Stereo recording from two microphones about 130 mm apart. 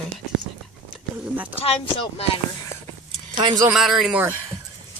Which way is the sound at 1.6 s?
50° left (ahead or behind).